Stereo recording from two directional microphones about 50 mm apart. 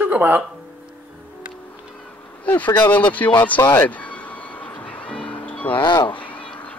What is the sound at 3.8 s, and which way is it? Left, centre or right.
Music, left.